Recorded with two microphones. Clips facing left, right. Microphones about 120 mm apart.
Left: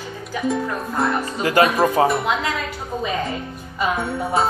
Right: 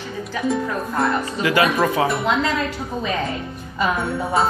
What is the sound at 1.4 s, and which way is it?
Speech, 40° left (ahead or behind).